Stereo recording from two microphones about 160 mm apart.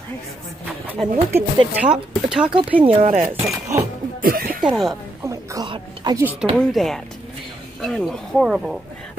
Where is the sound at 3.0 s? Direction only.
55° right (ahead or behind).